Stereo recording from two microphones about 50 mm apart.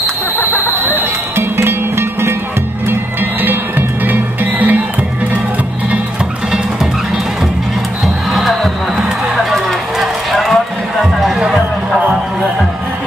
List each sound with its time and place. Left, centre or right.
0.4 s a sound: left
0.9 s music: right
2.9 s music: right
8.3 s music: centre